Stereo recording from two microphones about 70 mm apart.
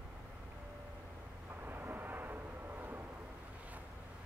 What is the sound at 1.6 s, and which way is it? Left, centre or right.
Vehicle, right.